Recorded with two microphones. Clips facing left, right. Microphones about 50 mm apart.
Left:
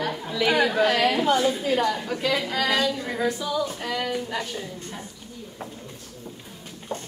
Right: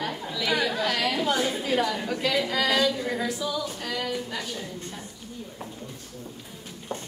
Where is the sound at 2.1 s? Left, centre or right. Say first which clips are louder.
Left 1 dB; centre.